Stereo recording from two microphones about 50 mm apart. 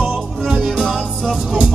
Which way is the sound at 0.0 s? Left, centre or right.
Centre.